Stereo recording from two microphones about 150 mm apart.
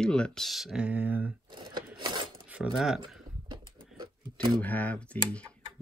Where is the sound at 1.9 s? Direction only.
30° right (ahead or behind).